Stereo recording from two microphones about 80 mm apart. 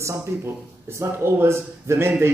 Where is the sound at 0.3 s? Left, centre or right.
Right.